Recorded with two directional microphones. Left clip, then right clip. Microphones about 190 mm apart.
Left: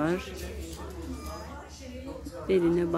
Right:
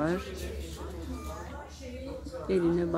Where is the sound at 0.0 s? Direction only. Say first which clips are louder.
Left 2 dB; 10° left (ahead or behind).